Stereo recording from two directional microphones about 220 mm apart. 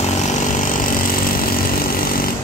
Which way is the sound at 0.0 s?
35° left (ahead or behind).